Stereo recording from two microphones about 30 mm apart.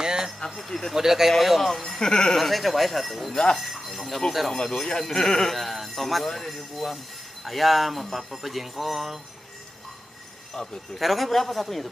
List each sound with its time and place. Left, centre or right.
0.0 s a sound: right
0.6 s a man's voice: centre
0.9 s speech: centre
1.7 s a man's voice: centre
2.0 s speech: left
2.3 s speech: centre
4.6 s a man's voice: centre
5.5 s speech: centre
10.5 s speech: centre
11.0 s speech: centre